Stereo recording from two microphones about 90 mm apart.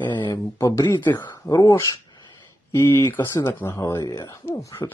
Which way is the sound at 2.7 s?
35° left (ahead or behind).